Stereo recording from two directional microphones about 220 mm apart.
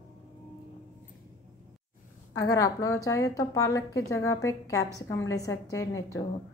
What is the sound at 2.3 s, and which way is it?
A woman's voice, 15° left (ahead or behind).